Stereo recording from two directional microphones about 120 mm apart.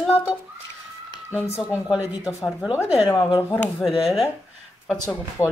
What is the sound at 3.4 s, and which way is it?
Speech, 15° left (ahead or behind).